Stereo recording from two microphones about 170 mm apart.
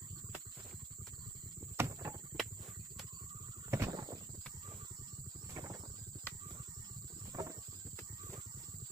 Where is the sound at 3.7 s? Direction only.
20° right (ahead or behind).